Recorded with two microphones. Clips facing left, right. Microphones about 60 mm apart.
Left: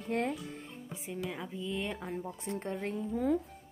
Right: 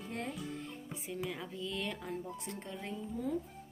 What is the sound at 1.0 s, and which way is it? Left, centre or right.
Speech, centre.